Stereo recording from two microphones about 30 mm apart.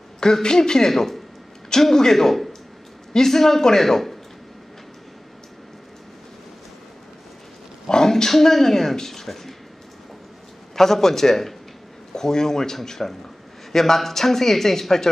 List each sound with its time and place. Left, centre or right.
0.2 s speech: left
7.9 s a sound: centre
8.3 s speech: centre
10.8 s speech: centre